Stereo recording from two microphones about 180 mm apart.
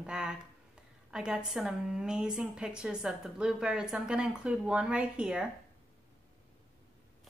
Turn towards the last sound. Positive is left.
turn(degrees=-5)  # may be behind; listen again after turning